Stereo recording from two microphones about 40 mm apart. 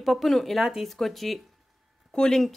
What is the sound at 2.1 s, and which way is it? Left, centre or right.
Speech, centre.